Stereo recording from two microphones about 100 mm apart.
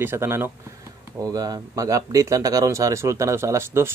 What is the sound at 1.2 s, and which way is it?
Speech, 40° right (ahead or behind).